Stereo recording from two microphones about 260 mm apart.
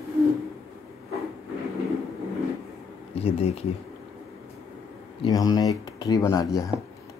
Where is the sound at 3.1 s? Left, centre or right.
Left.